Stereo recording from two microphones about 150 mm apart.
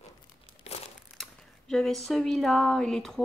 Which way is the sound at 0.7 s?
45° left (ahead or behind).